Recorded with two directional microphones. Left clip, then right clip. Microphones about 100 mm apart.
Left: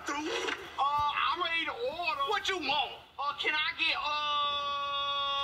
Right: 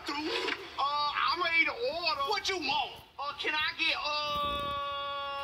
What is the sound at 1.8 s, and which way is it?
Speech, 25° right (ahead or behind).